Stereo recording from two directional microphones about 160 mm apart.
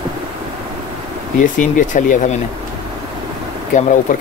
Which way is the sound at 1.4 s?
55° left (ahead or behind).